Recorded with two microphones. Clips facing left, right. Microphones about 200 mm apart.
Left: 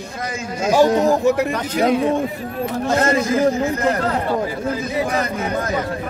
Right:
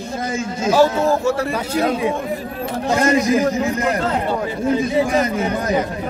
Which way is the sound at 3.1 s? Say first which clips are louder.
Right 3 dB; 15° right (ahead or behind).